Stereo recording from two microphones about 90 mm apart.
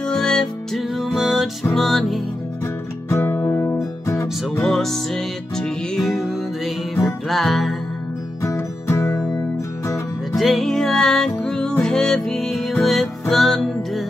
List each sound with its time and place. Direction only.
0.0 s music: 5° left (ahead or behind)
3.1 s music: 30° left (ahead or behind)
4.6 s music: 5° left (ahead or behind)
8.4 s music: 30° left (ahead or behind)
10.3 s music: centre (ahead or behind)